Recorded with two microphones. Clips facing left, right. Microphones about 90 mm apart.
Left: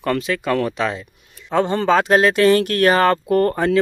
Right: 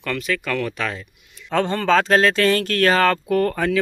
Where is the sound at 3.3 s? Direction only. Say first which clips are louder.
Left 3 dB; 40° left (ahead or behind).